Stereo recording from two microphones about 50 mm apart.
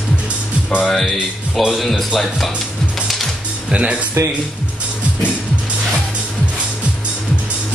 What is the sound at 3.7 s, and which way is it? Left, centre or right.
Speech, right.